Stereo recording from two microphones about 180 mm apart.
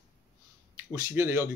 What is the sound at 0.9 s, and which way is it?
Speech, 15° right (ahead or behind).